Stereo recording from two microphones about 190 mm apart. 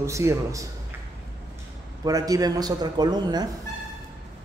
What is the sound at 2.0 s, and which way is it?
Speech, 20° right (ahead or behind).